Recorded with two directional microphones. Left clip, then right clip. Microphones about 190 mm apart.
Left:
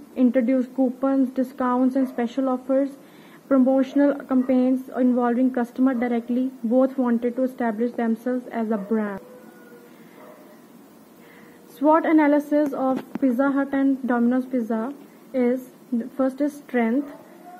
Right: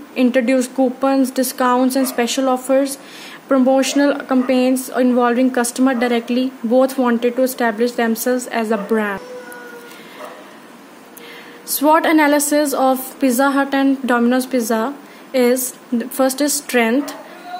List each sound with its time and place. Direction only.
0.1 s speech: 15° right (ahead or behind)
11.8 s a woman's voice: 20° right (ahead or behind)